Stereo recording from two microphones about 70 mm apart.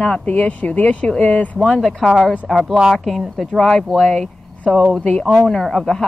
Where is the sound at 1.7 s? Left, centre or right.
Centre.